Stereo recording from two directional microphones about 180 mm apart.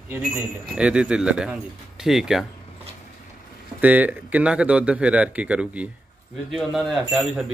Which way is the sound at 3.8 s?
10° right (ahead or behind).